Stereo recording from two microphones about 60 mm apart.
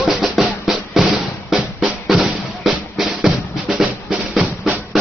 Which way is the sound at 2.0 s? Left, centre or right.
Centre.